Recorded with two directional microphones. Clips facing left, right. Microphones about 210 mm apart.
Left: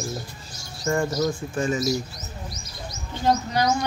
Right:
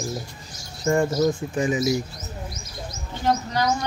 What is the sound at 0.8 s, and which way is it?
Speech, 25° right (ahead or behind).